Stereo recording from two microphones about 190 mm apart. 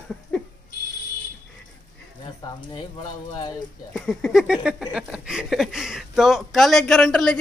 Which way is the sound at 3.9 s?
Centre (ahead or behind).